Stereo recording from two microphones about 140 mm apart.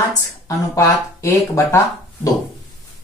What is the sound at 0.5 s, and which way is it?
Speech, 20° left (ahead or behind).